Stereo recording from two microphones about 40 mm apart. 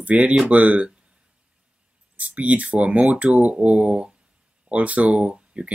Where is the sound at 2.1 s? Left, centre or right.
Right.